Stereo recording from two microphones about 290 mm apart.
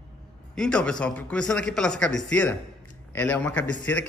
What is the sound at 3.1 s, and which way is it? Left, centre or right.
Speech, centre.